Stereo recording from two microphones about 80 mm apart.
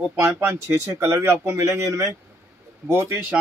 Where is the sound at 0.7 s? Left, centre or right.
Right.